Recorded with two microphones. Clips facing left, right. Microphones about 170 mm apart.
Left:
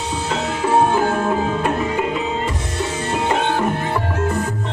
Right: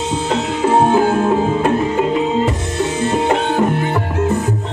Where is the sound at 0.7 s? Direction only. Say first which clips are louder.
Right 3 dB; 25° right (ahead or behind).